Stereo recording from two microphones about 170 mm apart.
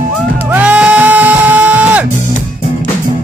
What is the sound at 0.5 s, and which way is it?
Music, 5° right (ahead or behind).